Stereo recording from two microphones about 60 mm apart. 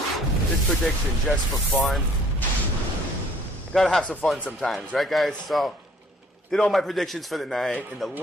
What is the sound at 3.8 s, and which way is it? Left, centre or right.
A man's voice, centre.